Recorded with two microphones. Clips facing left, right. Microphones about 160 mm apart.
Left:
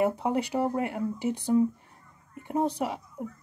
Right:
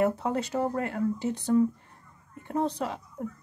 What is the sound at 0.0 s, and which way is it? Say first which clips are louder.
A woman's voice: even; 15° left (ahead or behind).